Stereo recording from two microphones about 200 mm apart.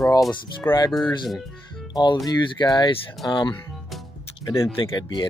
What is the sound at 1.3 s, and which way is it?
Speech, centre (ahead or behind).